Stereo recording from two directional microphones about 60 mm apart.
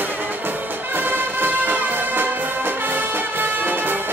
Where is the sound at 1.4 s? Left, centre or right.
Right.